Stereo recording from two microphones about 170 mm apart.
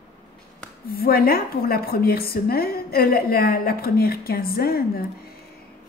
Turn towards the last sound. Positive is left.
turn(degrees=60)  # may be behind; listen again after turning